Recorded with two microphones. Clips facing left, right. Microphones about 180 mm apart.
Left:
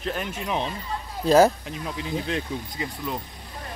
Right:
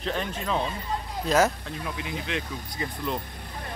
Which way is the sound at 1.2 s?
30° left (ahead or behind).